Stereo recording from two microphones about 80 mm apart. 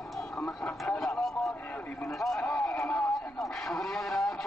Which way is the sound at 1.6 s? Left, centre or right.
Centre.